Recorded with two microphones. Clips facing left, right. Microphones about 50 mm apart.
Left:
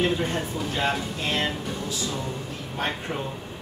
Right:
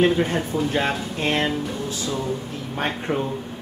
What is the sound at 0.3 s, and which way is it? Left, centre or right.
Speech, right.